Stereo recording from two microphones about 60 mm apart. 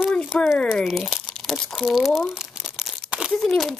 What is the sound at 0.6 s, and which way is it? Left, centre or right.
Speech, centre.